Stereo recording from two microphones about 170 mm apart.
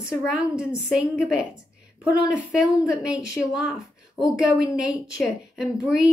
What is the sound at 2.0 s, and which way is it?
Speech, 5° right (ahead or behind).